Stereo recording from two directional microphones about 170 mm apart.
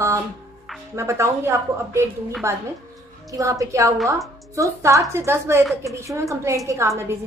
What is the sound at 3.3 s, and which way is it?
A woman's voice, 20° right (ahead or behind).